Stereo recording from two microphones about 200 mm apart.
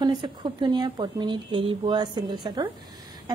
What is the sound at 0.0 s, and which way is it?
A woman's voice, 25° right (ahead or behind).